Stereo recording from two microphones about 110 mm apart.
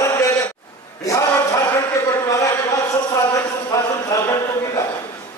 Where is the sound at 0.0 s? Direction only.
25° left (ahead or behind).